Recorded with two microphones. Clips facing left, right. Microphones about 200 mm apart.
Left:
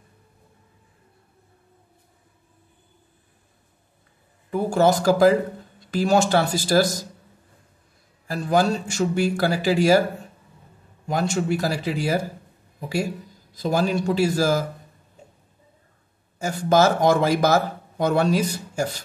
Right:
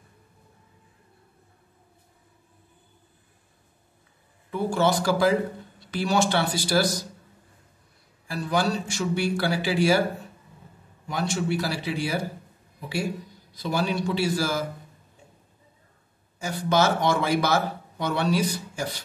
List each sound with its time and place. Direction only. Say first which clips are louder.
4.5 s speech: left 4 dB; 45° left (ahead or behind)
8.3 s speech: left 5 dB; 45° left (ahead or behind)
11.1 s speech: left 4 dB; 45° left (ahead or behind)
16.3 s speech: left 4 dB; 45° left (ahead or behind)